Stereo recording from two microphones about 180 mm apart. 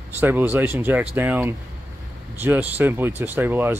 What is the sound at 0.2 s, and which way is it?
Speech, 10° right (ahead or behind).